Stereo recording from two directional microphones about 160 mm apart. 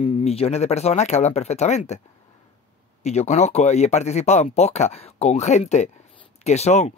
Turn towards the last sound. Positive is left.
turn(degrees=45)  # may be behind; listen again after turning